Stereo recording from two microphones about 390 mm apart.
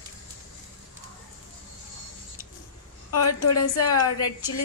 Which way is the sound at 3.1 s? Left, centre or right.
Left.